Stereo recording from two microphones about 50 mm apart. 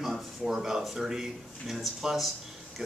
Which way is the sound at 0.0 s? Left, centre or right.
Centre.